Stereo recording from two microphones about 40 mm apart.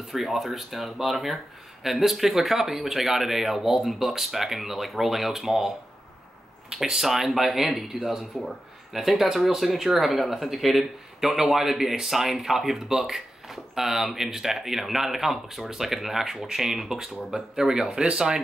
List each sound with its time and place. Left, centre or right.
0.1 s speech: centre
6.7 s speech: centre